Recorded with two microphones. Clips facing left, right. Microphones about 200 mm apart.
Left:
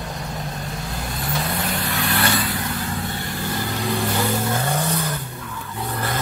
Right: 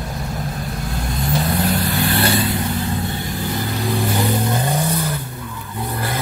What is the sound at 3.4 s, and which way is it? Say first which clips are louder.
Vehicle: right 2 dB; 15° right (ahead or behind).